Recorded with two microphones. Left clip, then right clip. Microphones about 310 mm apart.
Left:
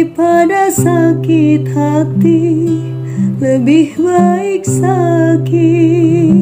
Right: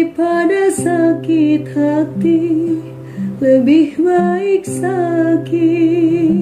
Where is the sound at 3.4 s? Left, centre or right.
Centre.